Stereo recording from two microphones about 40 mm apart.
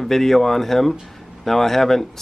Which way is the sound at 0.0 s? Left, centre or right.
Centre.